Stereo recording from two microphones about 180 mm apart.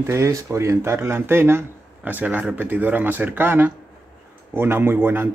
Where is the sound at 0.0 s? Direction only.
15° right (ahead or behind).